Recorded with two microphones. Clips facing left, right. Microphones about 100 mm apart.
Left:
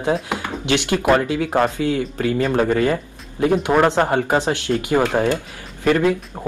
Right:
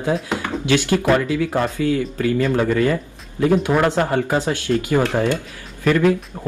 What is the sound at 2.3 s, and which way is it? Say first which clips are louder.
A man's voice: left 1 dB; 35° left (ahead or behind).